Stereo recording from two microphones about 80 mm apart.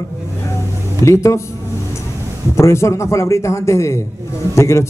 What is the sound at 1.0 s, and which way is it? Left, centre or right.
Speech, left.